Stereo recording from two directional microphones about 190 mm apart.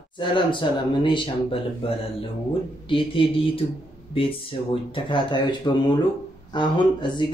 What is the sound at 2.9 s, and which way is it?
Speech, 30° left (ahead or behind).